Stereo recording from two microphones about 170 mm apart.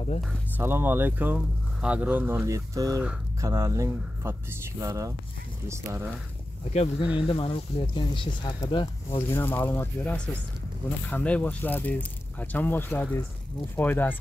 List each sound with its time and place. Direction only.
0.6 s speech: 15° right (ahead or behind)
6.7 s speech: 35° left (ahead or behind)
9.3 s speech: 10° left (ahead or behind)